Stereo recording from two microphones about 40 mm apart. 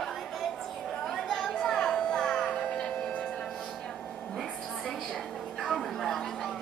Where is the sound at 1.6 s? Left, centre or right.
Centre.